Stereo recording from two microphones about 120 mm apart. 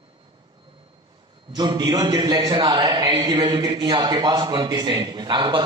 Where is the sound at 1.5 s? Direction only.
35° right (ahead or behind).